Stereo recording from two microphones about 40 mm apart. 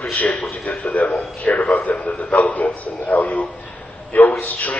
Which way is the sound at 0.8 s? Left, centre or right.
Left.